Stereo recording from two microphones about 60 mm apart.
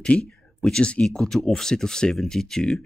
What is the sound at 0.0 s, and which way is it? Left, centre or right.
Speech, centre.